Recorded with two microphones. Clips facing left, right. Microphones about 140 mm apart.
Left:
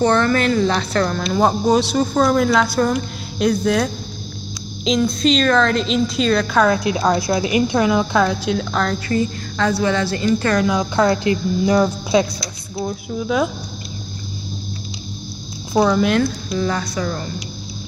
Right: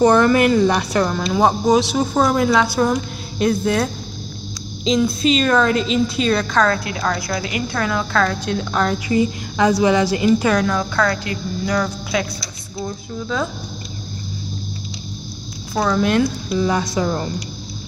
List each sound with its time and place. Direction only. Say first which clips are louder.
0.0 s a woman's voice: right 3 dB; 15° right (ahead or behind)
6.5 s a woman's voice: left 2 dB; 10° left (ahead or behind)
8.5 s a woman's voice: right 1 dB; centre (ahead or behind)
9.1 s a woman's voice: right 2 dB; 15° right (ahead or behind)
10.6 s a woman's voice: left 2 dB; 10° left (ahead or behind)
11.0 s a woman's voice: left 4 dB; 25° left (ahead or behind)
12.7 s speech: left 3 dB; 10° left (ahead or behind)
15.7 s speech: left 4 dB; 15° left (ahead or behind)
16.2 s a woman's voice: right 1 dB; 15° right (ahead or behind)